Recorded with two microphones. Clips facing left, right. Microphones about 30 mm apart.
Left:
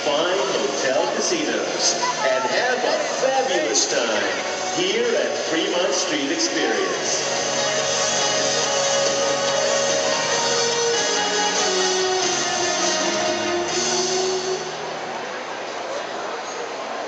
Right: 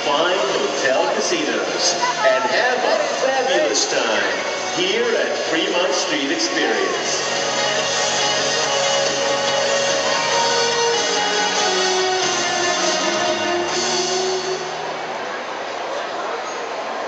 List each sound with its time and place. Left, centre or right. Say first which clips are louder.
0.0 s a sound: right 2 dB; centre
4.7 s a man's voice: right 2 dB; centre
7.5 s music: right 2 dB; right